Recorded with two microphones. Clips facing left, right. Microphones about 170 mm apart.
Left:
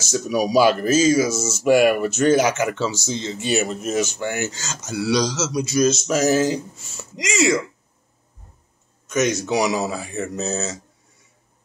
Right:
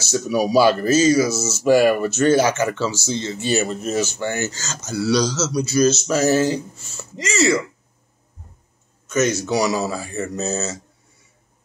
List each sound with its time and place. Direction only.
0.3 s speech: 15° left (ahead or behind)
1.3 s speech: 10° right (ahead or behind)
1.6 s speech: 10° left (ahead or behind)
3.6 s speech: centre (ahead or behind)
4.0 s speech: 15° left (ahead or behind)
9.1 s speech: 15° left (ahead or behind)
10.1 s speech: centre (ahead or behind)